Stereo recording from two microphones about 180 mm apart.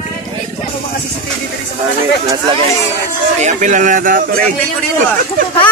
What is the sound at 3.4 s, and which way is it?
Speech, 45° right (ahead or behind).